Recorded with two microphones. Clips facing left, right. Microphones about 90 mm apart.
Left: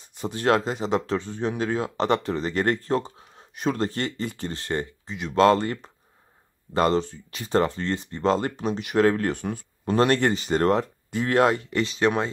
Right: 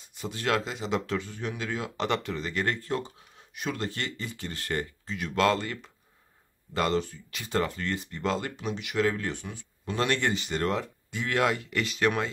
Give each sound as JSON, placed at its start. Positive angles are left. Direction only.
{"t": 0.2, "sound": "speech", "side_deg": 35}